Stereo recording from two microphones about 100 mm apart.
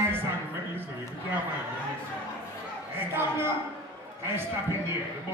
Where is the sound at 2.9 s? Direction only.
25° right (ahead or behind).